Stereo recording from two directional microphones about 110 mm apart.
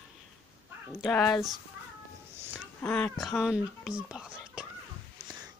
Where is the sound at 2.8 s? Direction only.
10° left (ahead or behind).